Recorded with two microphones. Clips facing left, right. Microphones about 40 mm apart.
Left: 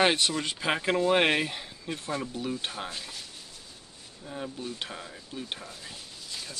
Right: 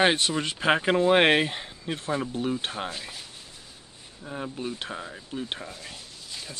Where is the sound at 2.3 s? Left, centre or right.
Right.